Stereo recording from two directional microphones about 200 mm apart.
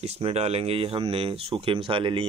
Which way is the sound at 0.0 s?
30° right (ahead or behind).